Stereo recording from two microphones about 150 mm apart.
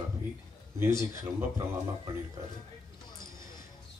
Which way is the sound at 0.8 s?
20° right (ahead or behind).